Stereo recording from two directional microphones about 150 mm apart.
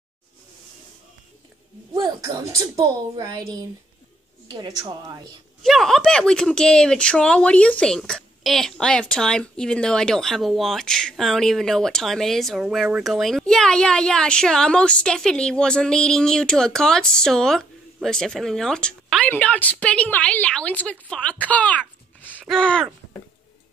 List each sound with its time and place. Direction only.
2.0 s a sound: 25° right (ahead or behind)
2.8 s a woman's voice: 25° right (ahead or behind)
5.6 s speech: centre (ahead or behind)